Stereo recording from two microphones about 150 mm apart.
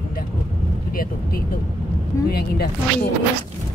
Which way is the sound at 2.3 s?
90° left.